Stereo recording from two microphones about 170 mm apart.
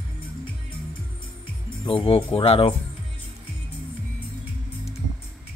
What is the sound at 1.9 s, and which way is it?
Speech, 35° left (ahead or behind).